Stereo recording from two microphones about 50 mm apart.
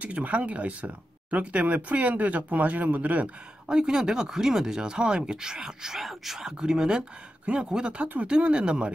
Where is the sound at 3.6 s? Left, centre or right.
Centre.